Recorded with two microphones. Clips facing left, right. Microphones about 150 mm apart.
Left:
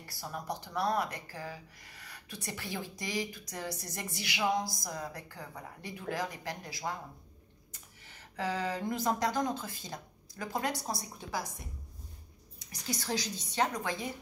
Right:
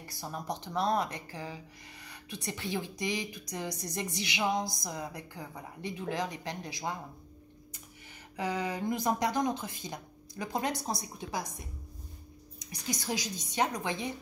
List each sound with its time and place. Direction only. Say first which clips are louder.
0.1 s speech: right 1 dB; 20° right (ahead or behind)
8.1 s speech: right 1 dB; 15° right (ahead or behind)
12.5 s speech: right 1 dB; 15° right (ahead or behind)